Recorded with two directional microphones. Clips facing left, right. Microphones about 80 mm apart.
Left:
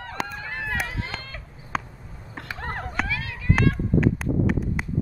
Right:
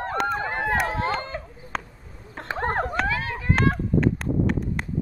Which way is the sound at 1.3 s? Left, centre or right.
Right.